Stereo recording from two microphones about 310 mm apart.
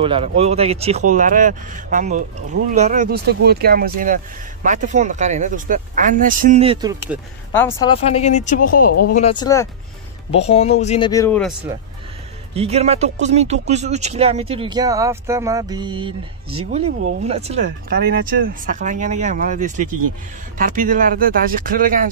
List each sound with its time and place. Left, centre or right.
0.0 s speech: centre
7.5 s speech: centre
12.5 s speech: centre